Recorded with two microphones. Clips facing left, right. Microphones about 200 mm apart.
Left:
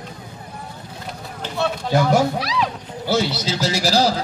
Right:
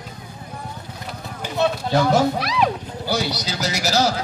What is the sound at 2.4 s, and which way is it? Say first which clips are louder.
Speech: right 2 dB; 55° right (ahead or behind).